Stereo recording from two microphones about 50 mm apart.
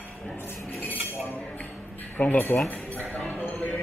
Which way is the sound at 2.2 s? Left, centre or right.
Left.